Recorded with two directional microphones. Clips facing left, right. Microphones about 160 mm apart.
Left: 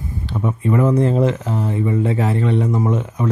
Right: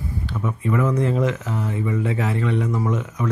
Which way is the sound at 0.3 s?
30° left (ahead or behind).